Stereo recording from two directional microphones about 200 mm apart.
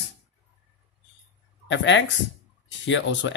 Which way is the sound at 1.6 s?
65° left (ahead or behind).